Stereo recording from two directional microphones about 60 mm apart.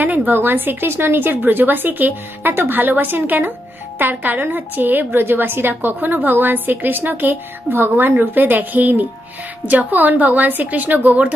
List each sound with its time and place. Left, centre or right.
0.0 s a woman's voice: right